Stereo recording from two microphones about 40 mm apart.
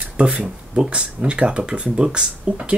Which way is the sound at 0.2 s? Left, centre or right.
Right.